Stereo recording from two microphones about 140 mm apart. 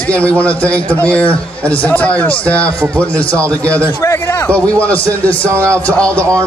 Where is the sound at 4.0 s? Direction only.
20° left (ahead or behind).